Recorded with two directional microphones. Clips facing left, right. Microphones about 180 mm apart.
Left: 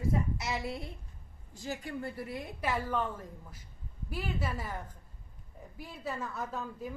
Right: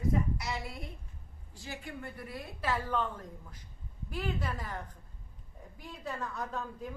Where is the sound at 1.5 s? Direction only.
45° left (ahead or behind).